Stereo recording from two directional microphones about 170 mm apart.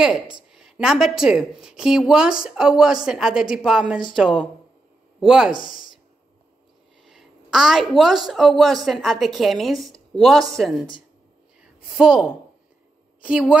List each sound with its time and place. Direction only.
0.0 s a woman's voice: 5° right (ahead or behind)
5.5 s speech: 55° left (ahead or behind)
7.1 s a sound: centre (ahead or behind)
8.3 s a woman's voice: centre (ahead or behind)
12.0 s a woman's voice: 5° right (ahead or behind)